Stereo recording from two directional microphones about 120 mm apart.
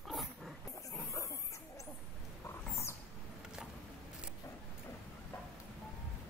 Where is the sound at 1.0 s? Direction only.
25° left (ahead or behind).